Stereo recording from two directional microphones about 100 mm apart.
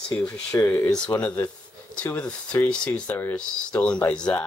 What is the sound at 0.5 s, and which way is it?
Speech, 30° left (ahead or behind).